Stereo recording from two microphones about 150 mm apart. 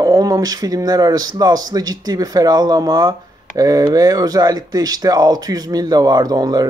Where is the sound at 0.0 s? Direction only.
25° right (ahead or behind).